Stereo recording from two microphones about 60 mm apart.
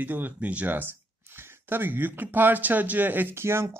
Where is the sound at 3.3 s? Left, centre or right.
Right.